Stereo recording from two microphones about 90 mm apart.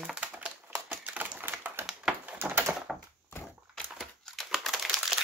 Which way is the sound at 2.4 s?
25° right (ahead or behind).